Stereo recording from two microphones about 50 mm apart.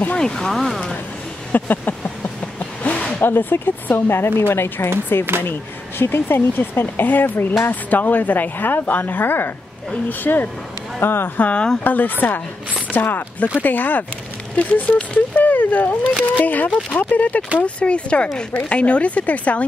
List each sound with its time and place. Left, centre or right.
0.2 s speech: centre
0.5 s speech: centre
1.5 s a sound: left
3.2 s a woman's voice: left
11.3 s a woman's voice: left
17.6 s speech: left